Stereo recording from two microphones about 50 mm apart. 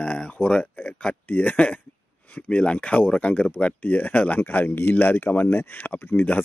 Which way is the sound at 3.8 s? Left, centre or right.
Left.